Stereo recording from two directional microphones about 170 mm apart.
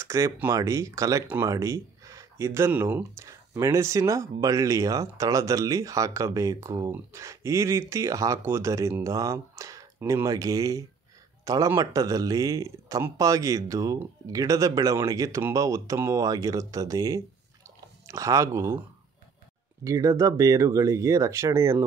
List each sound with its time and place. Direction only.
0.0 s speech: 15° right (ahead or behind)
17.6 s chewing: 15° right (ahead or behind)
19.8 s speech: 20° right (ahead or behind)